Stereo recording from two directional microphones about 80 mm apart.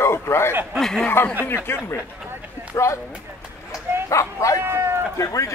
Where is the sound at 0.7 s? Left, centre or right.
Centre.